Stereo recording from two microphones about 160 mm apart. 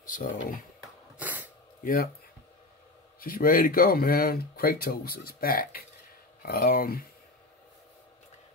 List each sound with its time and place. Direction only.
0.0 s speech: 55° left (ahead or behind)
1.1 s sneeze: 10° right (ahead or behind)
3.2 s speech: 65° left (ahead or behind)